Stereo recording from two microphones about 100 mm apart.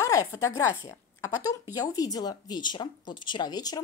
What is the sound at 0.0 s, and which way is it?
A woman's voice, 35° left (ahead or behind).